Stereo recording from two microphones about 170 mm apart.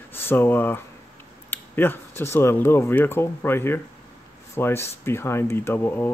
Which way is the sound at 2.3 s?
15° left (ahead or behind).